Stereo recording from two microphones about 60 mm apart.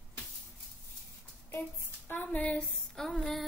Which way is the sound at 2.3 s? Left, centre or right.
Left.